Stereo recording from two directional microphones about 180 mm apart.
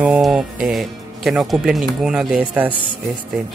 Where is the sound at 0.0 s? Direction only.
5° right (ahead or behind).